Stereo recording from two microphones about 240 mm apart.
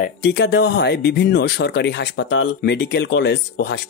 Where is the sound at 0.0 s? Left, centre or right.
Left.